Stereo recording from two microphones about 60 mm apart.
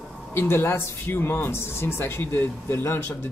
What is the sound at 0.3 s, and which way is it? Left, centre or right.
Speech, left.